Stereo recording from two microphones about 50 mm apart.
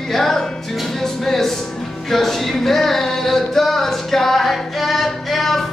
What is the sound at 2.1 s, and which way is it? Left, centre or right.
Singing, centre.